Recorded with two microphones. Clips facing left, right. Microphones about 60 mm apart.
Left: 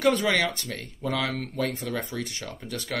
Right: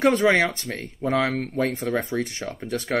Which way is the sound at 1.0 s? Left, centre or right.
Right.